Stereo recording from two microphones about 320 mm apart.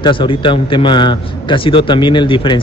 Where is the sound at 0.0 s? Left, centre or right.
Centre.